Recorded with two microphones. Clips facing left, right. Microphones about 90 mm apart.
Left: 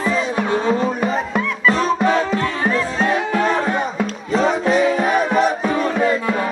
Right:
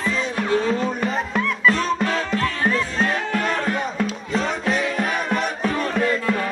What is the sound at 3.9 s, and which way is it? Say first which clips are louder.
Music: left 4 dB; centre (ahead or behind).